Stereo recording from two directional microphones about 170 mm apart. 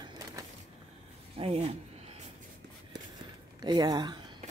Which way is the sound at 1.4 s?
35° right (ahead or behind).